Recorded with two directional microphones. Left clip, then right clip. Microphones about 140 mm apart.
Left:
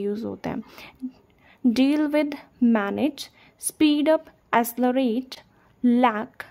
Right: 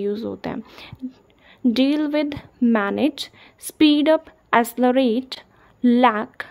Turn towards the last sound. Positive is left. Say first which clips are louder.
# right 4 dB
turn(degrees=20)  # may be behind; listen again after turning